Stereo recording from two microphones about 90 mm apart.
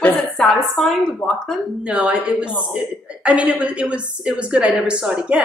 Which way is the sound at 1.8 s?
15° right (ahead or behind).